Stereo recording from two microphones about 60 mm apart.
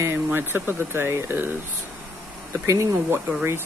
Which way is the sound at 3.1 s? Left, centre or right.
Right.